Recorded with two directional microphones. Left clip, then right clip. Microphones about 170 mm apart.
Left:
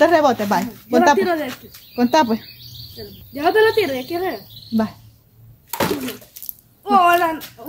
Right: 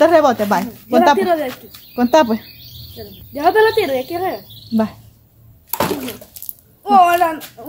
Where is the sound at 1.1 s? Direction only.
Centre (ahead or behind).